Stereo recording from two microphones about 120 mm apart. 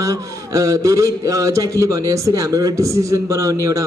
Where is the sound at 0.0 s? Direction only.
25° right (ahead or behind).